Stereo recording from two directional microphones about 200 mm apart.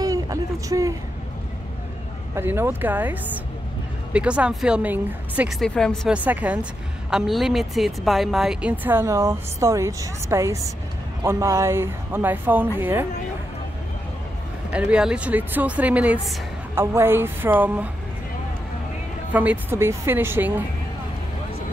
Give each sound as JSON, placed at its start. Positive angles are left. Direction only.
{"t": 0.0, "sound": "a sound", "side_deg": -15}
{"t": 2.3, "sound": "a woman's voice", "side_deg": -10}
{"t": 14.7, "sound": "a woman's voice", "side_deg": -5}
{"t": 19.3, "sound": "a woman's voice", "side_deg": -10}